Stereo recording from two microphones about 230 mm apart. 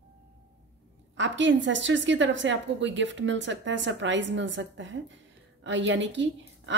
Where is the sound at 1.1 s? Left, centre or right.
Right.